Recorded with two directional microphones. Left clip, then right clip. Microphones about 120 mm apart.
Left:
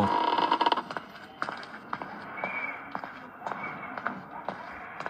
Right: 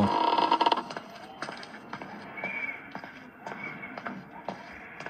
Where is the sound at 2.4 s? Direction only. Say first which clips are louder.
Left 1 dB; 50° left (ahead or behind).